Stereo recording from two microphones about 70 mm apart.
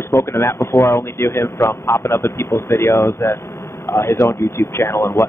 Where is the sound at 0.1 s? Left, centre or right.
Left.